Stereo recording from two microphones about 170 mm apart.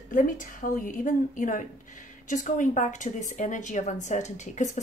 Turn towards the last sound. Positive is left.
turn(degrees=45)  # may be behind; listen again after turning